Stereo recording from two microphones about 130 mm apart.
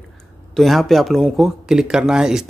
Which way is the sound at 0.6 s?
Centre (ahead or behind).